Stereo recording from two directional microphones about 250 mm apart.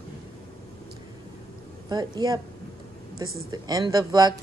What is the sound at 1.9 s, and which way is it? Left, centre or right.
Speech, centre.